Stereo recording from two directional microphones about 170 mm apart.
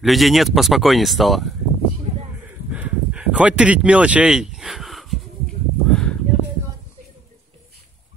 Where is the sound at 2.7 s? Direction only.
10° right (ahead or behind).